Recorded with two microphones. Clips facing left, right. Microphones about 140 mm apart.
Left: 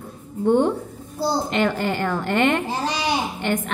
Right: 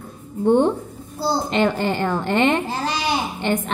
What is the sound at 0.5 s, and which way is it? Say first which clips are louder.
A woman's voice: right 2 dB; 25° right (ahead or behind).